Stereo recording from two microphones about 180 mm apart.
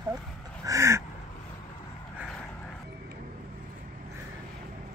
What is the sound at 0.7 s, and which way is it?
Duck, 15° right (ahead or behind).